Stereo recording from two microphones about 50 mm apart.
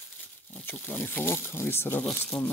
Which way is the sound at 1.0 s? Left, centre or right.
Left.